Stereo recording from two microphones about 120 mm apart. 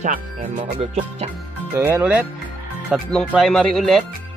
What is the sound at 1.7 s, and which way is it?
Speech, 20° right (ahead or behind).